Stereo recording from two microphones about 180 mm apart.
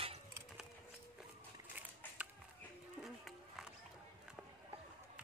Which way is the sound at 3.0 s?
Centre (ahead or behind).